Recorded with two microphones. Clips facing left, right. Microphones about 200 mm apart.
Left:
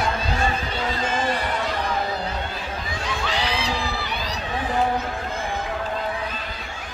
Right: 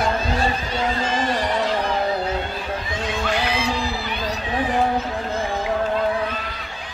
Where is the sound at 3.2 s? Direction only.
55° right (ahead or behind).